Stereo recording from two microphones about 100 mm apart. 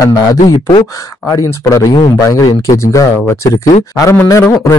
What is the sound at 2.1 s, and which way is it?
Speech, 35° left (ahead or behind).